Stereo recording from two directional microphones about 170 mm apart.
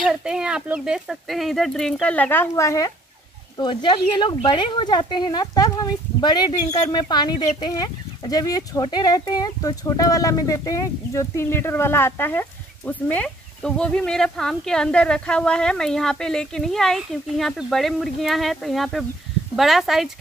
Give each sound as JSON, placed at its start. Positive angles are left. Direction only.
{"t": 0.0, "sound": "speech", "side_deg": -5}